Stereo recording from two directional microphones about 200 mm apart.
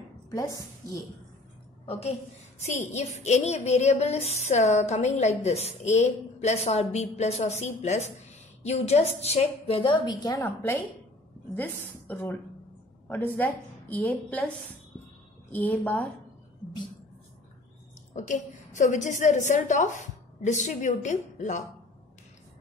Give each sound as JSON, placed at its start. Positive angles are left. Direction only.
{"t": 0.3, "sound": "a woman's voice", "side_deg": 15}
{"t": 1.9, "sound": "child singing", "side_deg": 30}
{"t": 12.1, "sound": "a woman's voice", "side_deg": 10}
{"t": 15.5, "sound": "a woman's voice", "side_deg": 10}
{"t": 18.1, "sound": "child singing", "side_deg": 35}